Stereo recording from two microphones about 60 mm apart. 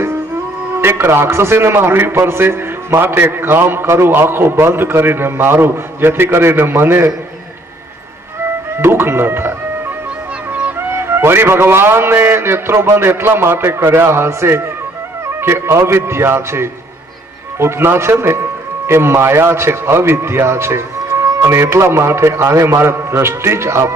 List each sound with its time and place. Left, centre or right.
0.7 s a man's voice: right
8.7 s speech: right
10.9 s a man's voice: right